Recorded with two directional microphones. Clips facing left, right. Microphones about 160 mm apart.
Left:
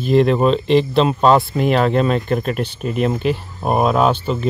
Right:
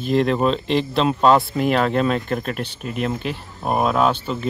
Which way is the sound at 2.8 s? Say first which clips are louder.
Left 5 dB; 35° left (ahead or behind).